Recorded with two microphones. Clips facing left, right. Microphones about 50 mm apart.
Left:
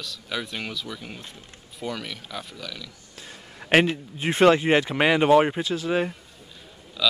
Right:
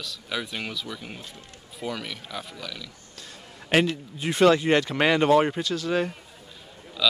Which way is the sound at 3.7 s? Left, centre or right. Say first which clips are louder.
Left 3 dB; left.